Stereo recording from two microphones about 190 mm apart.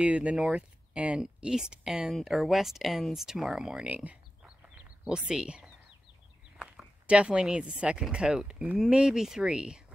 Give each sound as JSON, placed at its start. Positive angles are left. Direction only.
{"t": 0.0, "sound": "speech", "side_deg": -5}